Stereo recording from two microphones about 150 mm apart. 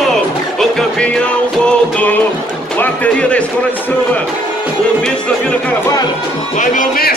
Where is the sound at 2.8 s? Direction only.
10° left (ahead or behind).